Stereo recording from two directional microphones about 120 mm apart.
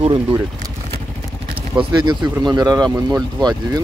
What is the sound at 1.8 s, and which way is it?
Speech, 40° right (ahead or behind).